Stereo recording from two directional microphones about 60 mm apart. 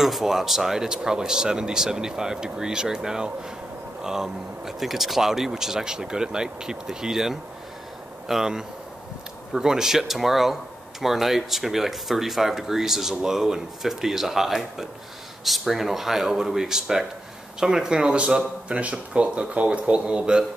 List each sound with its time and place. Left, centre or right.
0.0 s speech: centre